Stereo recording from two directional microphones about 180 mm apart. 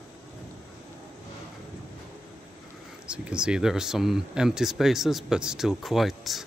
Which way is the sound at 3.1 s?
5° right (ahead or behind).